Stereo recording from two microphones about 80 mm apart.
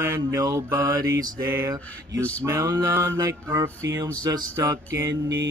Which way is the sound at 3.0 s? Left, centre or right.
Right.